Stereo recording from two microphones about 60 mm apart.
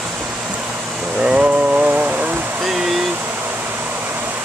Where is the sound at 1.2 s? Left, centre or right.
Centre.